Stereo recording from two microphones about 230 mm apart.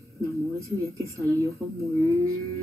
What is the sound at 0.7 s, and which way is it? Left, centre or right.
Speech, centre.